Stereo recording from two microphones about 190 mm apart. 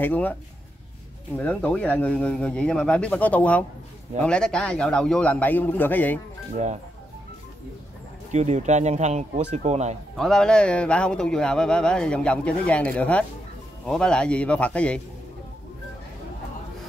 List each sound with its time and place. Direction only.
0.0 s speech: 10° left (ahead or behind)
8.3 s speech: 35° right (ahead or behind)
10.1 s speech: centre (ahead or behind)